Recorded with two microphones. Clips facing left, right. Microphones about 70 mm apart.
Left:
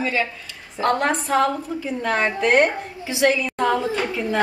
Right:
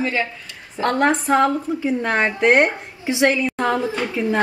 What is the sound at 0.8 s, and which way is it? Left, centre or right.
Speech, right.